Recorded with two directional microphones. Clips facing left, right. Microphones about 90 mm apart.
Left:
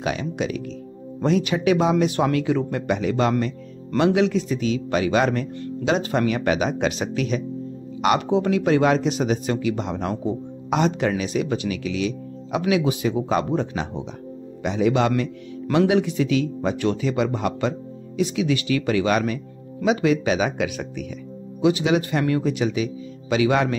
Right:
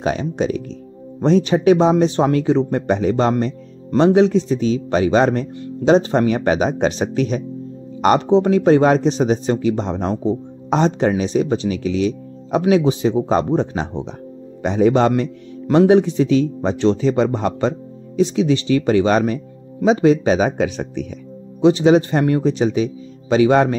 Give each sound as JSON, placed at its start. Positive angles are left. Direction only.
{"t": 0.0, "sound": "a man's voice", "side_deg": -35}